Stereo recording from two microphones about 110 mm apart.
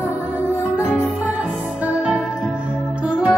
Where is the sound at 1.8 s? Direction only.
10° right (ahead or behind).